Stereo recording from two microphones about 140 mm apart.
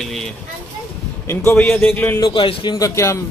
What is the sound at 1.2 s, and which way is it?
Speech, 15° left (ahead or behind).